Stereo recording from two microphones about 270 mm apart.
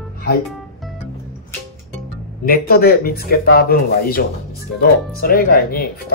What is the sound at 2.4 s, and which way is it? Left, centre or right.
Speech, left.